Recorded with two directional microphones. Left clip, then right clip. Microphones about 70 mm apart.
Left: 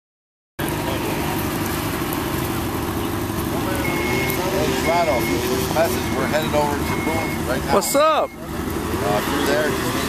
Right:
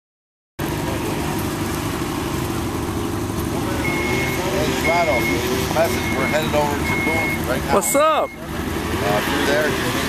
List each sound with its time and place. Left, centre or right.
4.1 s reversing beeps: centre
4.8 s vehicle: right
6.3 s speech: centre
7.7 s speech: centre
9.0 s speech: right